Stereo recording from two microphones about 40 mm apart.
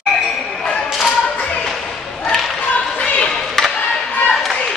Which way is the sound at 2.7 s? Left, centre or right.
Left.